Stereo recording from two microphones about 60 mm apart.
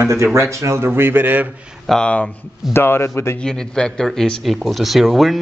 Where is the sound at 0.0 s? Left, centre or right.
Right.